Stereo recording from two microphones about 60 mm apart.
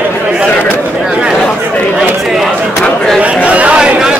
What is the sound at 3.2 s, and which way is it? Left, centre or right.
Speech, right.